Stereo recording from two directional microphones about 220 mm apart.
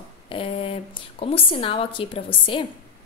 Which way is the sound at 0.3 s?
25° left (ahead or behind).